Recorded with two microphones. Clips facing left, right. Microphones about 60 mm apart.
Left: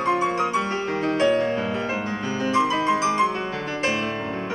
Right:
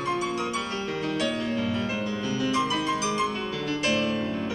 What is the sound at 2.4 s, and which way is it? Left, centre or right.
Music, left.